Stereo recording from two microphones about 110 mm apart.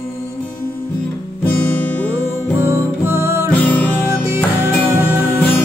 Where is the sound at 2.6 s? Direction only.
25° right (ahead or behind).